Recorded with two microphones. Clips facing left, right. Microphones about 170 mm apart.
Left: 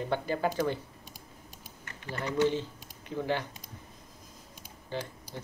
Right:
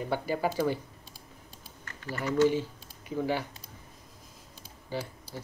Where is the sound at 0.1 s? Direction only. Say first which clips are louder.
Right 1 dB; 10° right (ahead or behind).